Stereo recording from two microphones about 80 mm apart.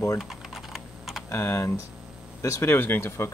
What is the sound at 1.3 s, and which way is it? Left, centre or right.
Speech, left.